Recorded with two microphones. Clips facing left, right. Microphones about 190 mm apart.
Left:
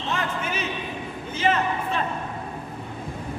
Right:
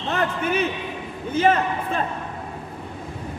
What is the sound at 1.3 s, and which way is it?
Speech, 50° right (ahead or behind).